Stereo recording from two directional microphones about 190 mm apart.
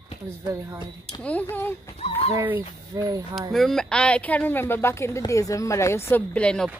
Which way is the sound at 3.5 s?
Centre (ahead or behind).